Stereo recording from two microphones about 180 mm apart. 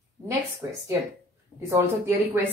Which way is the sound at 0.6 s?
15° right (ahead or behind).